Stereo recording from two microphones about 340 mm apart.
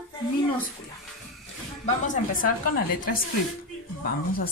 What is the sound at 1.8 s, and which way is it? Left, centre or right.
A woman's voice, left.